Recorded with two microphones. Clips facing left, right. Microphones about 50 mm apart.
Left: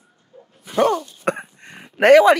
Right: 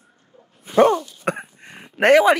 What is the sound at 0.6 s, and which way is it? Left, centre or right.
Dog, right.